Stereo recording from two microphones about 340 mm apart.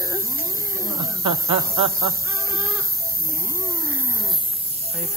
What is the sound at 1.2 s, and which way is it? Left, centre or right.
Snake, centre.